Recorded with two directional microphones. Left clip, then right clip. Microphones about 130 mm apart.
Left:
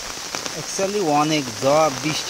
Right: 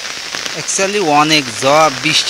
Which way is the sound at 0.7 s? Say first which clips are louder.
Right 7 dB; 5° right (ahead or behind).